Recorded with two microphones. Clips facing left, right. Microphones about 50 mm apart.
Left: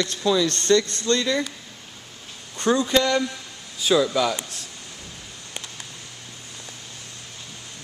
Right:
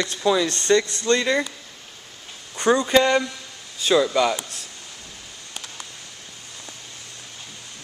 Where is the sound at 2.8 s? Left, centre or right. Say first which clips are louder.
Right 3 dB; centre.